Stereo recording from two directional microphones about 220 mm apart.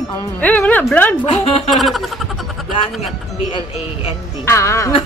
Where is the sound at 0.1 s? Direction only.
10° left (ahead or behind).